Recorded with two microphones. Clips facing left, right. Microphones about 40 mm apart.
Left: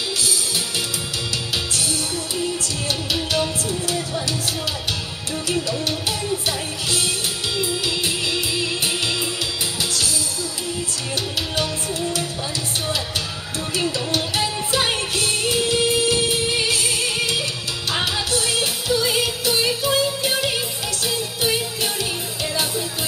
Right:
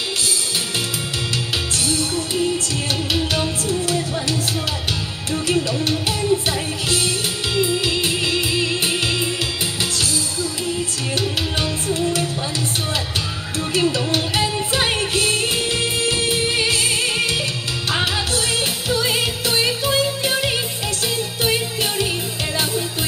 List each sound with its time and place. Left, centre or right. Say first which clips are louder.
5.5 s music: right 3 dB; right
7.5 s music: right 6 dB; right
11.1 s music: right 2 dB; right
13.9 s music: right 2 dB; right